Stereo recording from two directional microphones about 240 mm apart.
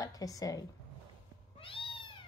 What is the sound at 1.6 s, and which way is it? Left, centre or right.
Cat, left.